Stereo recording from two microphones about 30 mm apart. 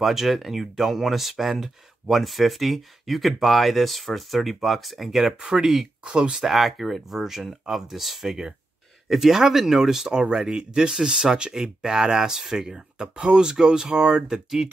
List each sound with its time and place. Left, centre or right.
0.0 s speech: centre
10.0 s speech: right
11.0 s speech: centre